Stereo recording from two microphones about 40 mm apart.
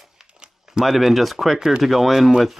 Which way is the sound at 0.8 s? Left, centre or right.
Centre.